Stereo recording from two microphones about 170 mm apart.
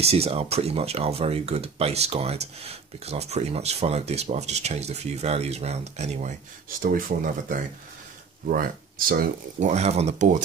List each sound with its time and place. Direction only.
0.0 s speech: 35° right (ahead or behind)
7.1 s speech: 50° right (ahead or behind)
8.5 s speech: 55° right (ahead or behind)
9.7 s speech: 40° right (ahead or behind)